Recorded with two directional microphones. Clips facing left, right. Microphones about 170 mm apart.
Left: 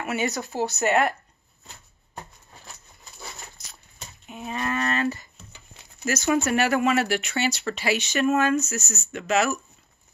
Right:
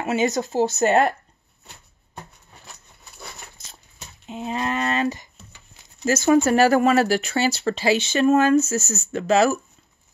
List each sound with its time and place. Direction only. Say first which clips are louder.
0.0 s speech: right 6 dB; 25° right (ahead or behind)
4.3 s speech: right 3 dB; 25° right (ahead or behind)